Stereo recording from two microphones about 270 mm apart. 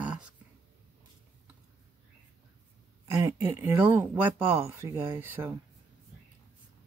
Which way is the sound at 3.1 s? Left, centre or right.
Centre.